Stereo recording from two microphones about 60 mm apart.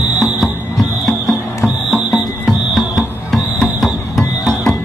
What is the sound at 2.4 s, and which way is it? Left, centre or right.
Music, centre.